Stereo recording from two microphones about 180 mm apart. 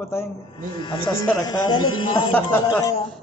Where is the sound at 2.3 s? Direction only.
10° left (ahead or behind).